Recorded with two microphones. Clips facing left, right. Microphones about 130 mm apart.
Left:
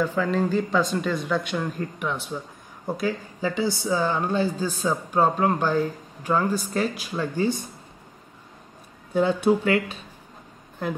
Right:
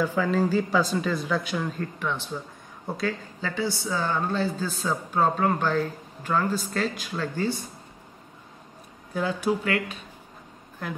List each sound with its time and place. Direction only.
0.0 s speech: 5° right (ahead or behind)
1.8 s speech: 10° left (ahead or behind)
9.1 s speech: 25° left (ahead or behind)